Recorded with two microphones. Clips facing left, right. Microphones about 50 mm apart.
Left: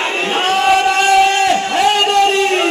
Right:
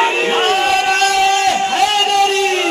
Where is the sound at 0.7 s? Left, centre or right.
Centre.